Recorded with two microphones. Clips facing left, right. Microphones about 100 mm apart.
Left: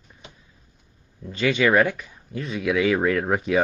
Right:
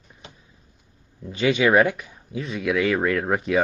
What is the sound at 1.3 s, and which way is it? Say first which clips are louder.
Speech: right 1 dB; 15° right (ahead or behind).